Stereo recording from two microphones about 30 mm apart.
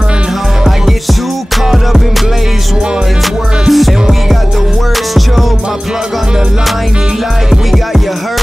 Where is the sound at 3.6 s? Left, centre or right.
Centre.